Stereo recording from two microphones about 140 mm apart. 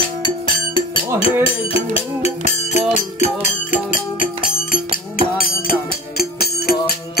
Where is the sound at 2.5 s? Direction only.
55° left (ahead or behind).